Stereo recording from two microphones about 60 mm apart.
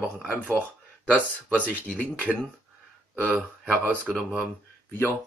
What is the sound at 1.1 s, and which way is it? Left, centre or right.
Speech, left.